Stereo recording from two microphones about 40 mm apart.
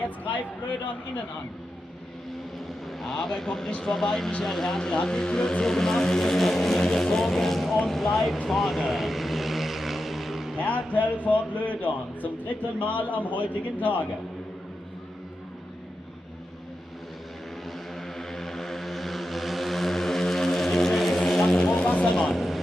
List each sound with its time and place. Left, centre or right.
0.0 s speech: left
3.0 s speech: centre
8.5 s vehicle: centre
10.6 s a man's voice: left
18.0 s vehicle: centre
21.6 s a sound: left
22.2 s vehicle: centre